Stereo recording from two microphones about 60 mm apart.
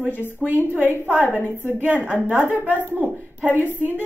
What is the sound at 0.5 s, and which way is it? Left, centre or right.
A woman's voice, right.